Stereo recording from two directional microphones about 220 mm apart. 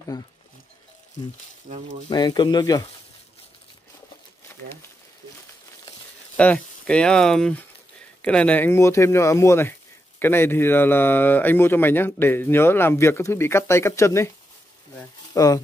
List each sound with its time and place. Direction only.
0.1 s speech: 20° left (ahead or behind)
2.0 s speech: 20° left (ahead or behind)
6.3 s speech: 5° left (ahead or behind)
15.3 s speech: 15° left (ahead or behind)